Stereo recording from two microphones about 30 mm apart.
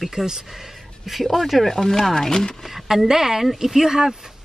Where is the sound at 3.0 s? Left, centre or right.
Centre.